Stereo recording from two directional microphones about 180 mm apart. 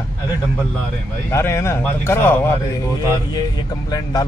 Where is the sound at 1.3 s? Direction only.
15° left (ahead or behind).